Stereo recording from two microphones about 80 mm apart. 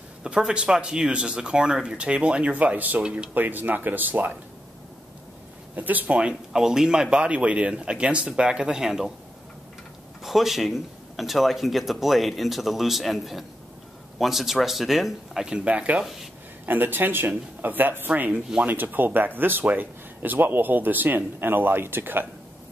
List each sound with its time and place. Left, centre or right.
0.2 s speech: centre
3.3 s speech: right
5.8 s speech: right; by 9.1 s centre
10.2 s speech: centre
15.4 s speech: centre